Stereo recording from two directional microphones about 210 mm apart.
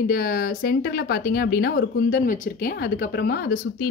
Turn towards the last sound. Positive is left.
turn(degrees=45)  # may be behind; listen again after turning